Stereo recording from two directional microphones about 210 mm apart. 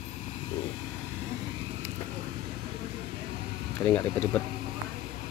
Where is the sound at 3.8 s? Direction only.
5° left (ahead or behind).